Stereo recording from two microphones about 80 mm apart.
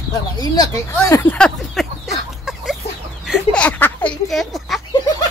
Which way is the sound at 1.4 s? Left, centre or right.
Centre.